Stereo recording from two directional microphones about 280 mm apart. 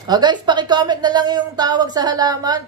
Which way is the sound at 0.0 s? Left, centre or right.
Centre.